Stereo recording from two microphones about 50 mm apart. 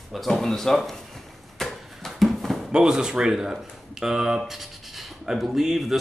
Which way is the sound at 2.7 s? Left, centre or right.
Centre.